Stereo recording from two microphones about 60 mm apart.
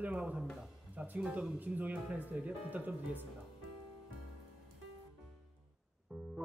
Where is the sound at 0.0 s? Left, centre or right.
Right.